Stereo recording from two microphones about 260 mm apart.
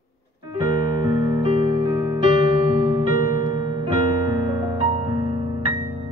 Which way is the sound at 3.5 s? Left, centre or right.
Centre.